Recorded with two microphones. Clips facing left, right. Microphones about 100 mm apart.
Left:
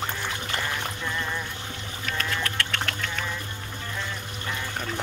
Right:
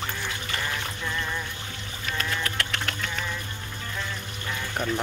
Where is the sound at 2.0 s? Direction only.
5° right (ahead or behind).